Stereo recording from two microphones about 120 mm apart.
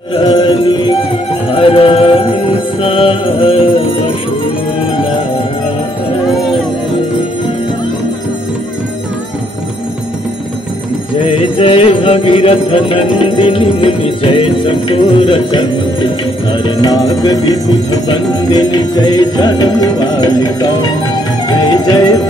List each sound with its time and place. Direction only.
0.1 s music: 50° left (ahead or behind)
6.2 s a sound: centre (ahead or behind)
11.1 s music: 50° left (ahead or behind); by 22.2 s 35° left (ahead or behind)